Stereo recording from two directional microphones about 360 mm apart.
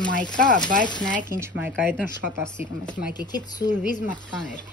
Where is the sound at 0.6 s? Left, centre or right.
Centre.